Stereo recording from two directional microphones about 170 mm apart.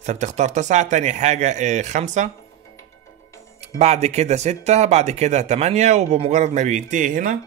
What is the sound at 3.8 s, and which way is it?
Speech, 40° right (ahead or behind).